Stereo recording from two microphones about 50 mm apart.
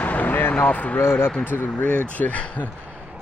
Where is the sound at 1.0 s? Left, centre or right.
Left.